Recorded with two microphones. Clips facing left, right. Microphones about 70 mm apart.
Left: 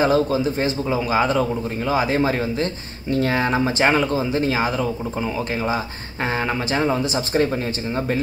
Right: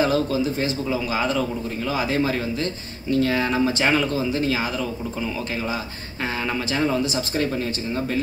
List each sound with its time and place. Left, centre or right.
0.0 s a man's voice: left
6.3 s a man's voice: left